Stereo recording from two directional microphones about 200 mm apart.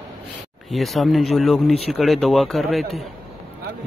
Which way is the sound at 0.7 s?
Centre (ahead or behind).